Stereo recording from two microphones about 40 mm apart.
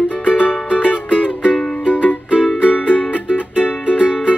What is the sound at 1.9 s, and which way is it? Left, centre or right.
Music, left.